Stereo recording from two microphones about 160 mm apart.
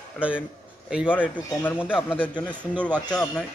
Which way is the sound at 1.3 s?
10° left (ahead or behind).